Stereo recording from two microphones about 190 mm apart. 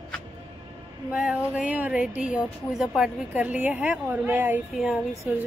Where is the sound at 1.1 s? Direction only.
5° right (ahead or behind).